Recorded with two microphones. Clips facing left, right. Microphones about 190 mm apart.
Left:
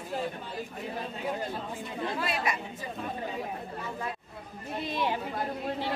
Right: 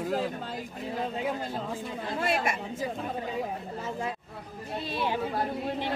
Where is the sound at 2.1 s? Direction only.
50° right (ahead or behind).